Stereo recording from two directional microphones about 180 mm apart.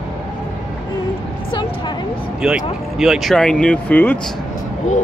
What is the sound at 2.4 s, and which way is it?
Speech, 5° right (ahead or behind).